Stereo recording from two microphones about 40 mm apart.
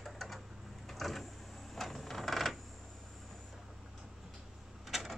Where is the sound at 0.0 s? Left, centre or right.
Centre.